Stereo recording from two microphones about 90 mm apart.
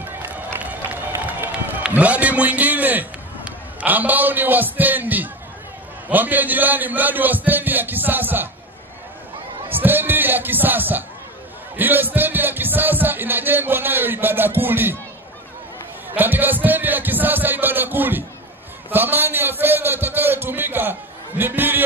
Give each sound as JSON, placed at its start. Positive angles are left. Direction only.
{"t": 0.0, "sound": "run", "side_deg": -20}
{"t": 1.8, "sound": "a man's voice", "side_deg": -15}
{"t": 9.7, "sound": "a sound", "side_deg": -20}
{"t": 11.7, "sound": "speech", "side_deg": -20}
{"t": 16.2, "sound": "music", "side_deg": -20}
{"t": 18.9, "sound": "a man's voice", "side_deg": -20}